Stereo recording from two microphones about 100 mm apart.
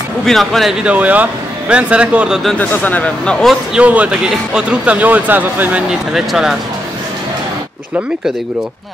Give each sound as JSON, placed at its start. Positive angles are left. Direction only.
{"t": 0.2, "sound": "speech", "side_deg": 5}
{"t": 0.8, "sound": "speech", "side_deg": -15}
{"t": 2.6, "sound": "speech", "side_deg": 15}
{"t": 3.8, "sound": "speech", "side_deg": -15}